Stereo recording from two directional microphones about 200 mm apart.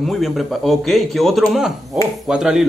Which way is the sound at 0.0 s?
Centre (ahead or behind).